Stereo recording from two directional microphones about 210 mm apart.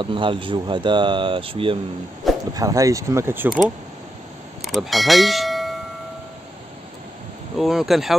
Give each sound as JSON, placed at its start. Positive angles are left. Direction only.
{"t": 0.0, "sound": "speech", "side_deg": -25}
{"t": 3.4, "sound": "speech", "side_deg": 0}
{"t": 7.5, "sound": "speech", "side_deg": 0}